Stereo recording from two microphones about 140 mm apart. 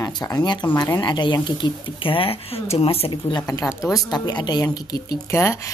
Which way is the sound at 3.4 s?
20° left (ahead or behind).